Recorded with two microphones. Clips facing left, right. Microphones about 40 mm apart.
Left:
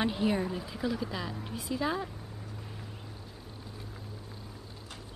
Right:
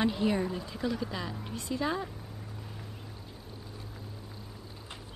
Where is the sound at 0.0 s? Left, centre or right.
Centre.